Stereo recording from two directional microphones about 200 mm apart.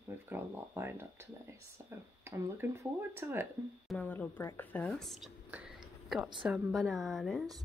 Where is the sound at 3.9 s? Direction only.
10° left (ahead or behind).